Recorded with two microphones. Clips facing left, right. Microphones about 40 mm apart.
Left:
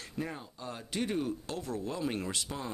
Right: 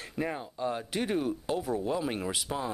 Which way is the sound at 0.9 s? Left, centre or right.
Centre.